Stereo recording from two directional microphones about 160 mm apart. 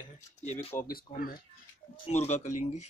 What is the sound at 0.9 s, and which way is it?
Speech, 65° left (ahead or behind).